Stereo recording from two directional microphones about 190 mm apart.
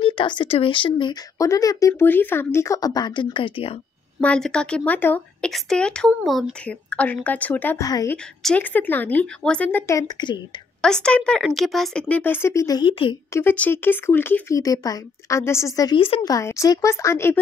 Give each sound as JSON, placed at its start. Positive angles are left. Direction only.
{"t": 0.0, "sound": "speech", "side_deg": 25}
{"t": 4.2, "sound": "speech", "side_deg": 5}
{"t": 8.4, "sound": "speech", "side_deg": 5}
{"t": 10.8, "sound": "speech", "side_deg": 5}
{"t": 13.4, "sound": "speech", "side_deg": 10}